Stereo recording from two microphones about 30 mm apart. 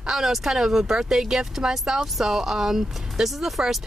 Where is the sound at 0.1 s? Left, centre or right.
Centre.